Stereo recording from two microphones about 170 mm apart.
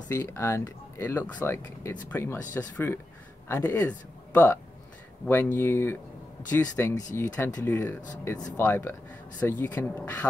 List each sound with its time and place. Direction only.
0.1 s speech: 15° left (ahead or behind)